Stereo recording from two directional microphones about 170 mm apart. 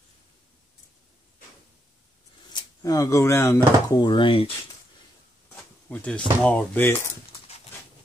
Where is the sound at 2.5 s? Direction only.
20° left (ahead or behind).